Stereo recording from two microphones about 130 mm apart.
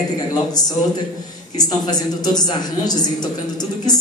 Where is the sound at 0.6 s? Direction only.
30° left (ahead or behind).